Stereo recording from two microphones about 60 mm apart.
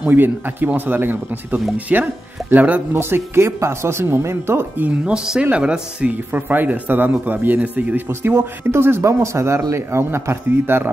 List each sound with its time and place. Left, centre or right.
0.0 s a man's voice: right
2.9 s speech: right
4.7 s speech: right
5.1 s speech: centre
6.3 s a man's voice: right
9.0 s speech: right